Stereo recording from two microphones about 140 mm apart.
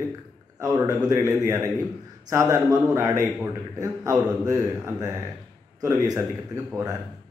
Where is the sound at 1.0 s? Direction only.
25° right (ahead or behind).